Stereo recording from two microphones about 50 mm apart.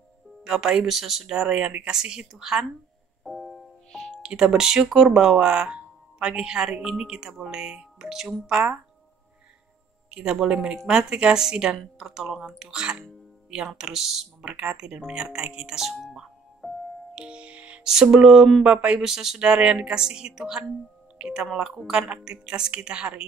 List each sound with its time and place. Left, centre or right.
0.4 s speech: centre
3.3 s music: centre
4.2 s a woman's voice: centre
10.1 s speech: centre
12.7 s speech: centre
13.7 s speech: centre
14.4 s a woman's voice: centre
15.1 s music: centre
17.1 s music: centre
17.8 s a woman's voice: centre
18.9 s a woman's voice: centre